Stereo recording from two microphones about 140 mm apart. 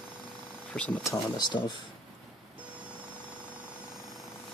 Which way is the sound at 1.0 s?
30° left (ahead or behind).